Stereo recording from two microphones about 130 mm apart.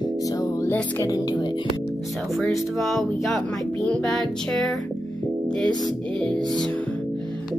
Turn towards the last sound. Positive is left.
turn(degrees=5)  # may be behind; listen again after turning